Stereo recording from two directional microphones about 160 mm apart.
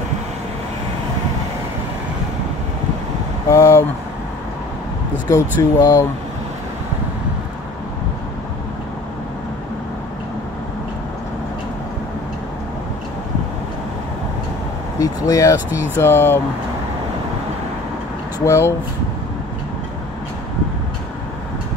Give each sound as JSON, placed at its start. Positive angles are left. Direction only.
{"t": 3.4, "sound": "vehicle", "side_deg": 20}
{"t": 5.3, "sound": "speech", "side_deg": 20}
{"t": 15.0, "sound": "speech", "side_deg": 20}
{"t": 18.4, "sound": "speech", "side_deg": 20}